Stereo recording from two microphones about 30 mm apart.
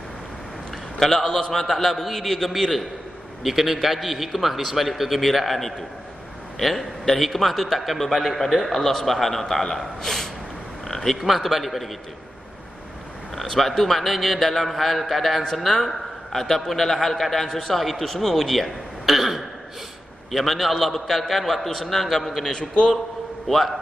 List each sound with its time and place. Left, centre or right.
0.9 s a man's voice: centre
10.9 s frog: centre
11.1 s a man's voice: centre
13.4 s a man's voice: centre
22.4 s a man's voice: left
23.4 s a man's voice: centre